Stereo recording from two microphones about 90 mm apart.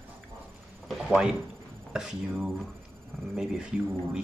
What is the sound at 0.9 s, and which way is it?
Speech, centre (ahead or behind).